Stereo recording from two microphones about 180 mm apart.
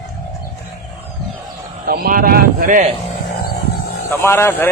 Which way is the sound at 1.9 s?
55° right (ahead or behind).